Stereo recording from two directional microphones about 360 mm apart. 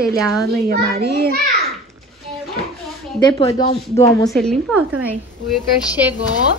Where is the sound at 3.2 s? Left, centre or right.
Centre.